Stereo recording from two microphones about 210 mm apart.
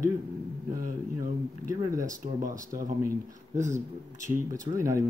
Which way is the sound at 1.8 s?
15° right (ahead or behind).